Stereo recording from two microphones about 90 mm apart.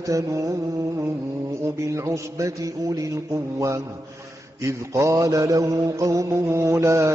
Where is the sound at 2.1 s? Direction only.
35° right (ahead or behind).